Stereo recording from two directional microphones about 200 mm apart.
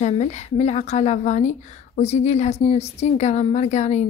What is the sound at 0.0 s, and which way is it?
A woman's voice, 35° left (ahead or behind).